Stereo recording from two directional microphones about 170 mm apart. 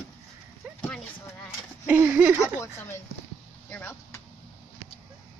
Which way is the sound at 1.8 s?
10° right (ahead or behind).